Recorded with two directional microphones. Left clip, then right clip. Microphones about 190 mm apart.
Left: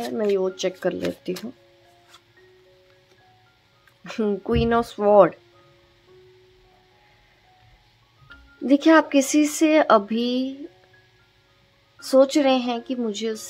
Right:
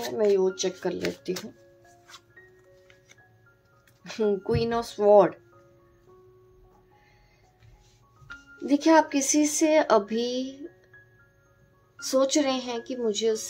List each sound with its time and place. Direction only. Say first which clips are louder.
0.4 s speech: left 2 dB; 45° left (ahead or behind)
4.0 s speech: left 1 dB; 45° left (ahead or behind)
8.6 s speech: left 4 dB; 45° left (ahead or behind)
12.0 s a woman's voice: left 6 dB; 40° left (ahead or behind)